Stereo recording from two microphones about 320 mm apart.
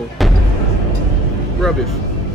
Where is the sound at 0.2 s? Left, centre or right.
Centre.